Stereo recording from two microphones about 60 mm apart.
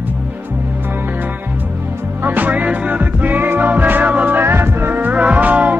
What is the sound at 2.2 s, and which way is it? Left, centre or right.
Music, right.